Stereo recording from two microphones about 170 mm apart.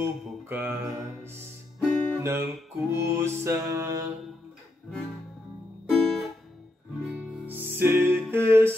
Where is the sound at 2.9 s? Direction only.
15° right (ahead or behind).